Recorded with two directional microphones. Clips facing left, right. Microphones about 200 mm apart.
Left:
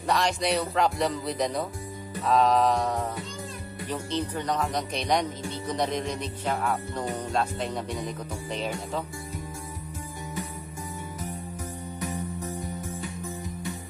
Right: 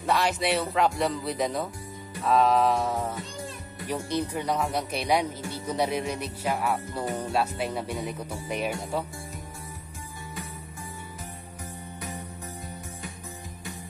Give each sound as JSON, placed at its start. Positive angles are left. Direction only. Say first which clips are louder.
{"t": 0.0, "sound": "speech", "louder": "even", "side_deg": -5}